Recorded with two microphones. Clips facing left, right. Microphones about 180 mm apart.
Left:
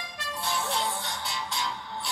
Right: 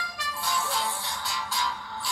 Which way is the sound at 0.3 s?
25° left (ahead or behind).